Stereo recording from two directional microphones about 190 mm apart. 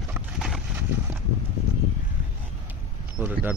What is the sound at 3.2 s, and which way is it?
Speech, 10° right (ahead or behind).